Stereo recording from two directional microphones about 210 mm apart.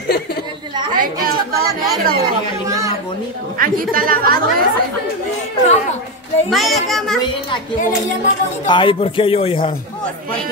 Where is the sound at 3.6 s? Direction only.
40° right (ahead or behind).